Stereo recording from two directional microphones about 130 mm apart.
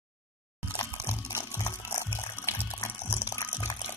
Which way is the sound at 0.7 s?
25° left (ahead or behind).